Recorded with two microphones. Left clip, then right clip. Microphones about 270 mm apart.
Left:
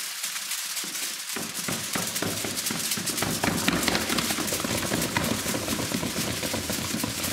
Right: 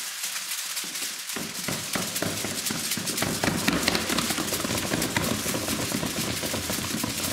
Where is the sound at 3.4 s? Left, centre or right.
Right.